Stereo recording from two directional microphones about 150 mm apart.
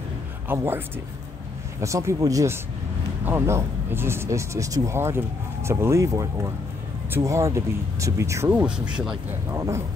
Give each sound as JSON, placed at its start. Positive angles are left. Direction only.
{"t": 0.5, "sound": "speech", "side_deg": -15}
{"t": 8.5, "sound": "speech", "side_deg": -5}
{"t": 9.5, "sound": "speech", "side_deg": -20}